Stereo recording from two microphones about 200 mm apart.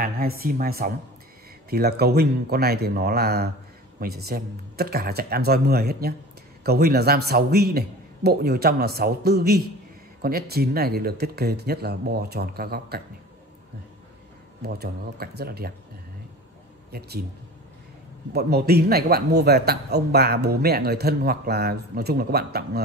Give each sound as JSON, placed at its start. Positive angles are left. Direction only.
{"t": 0.0, "sound": "a man's voice", "side_deg": -50}
{"t": 14.6, "sound": "a man's voice", "side_deg": -55}
{"t": 16.9, "sound": "a man's voice", "side_deg": -55}
{"t": 18.3, "sound": "a man's voice", "side_deg": -55}